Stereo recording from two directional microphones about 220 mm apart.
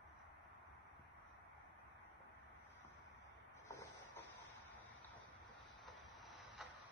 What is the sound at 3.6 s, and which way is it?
Printer, 15° left (ahead or behind).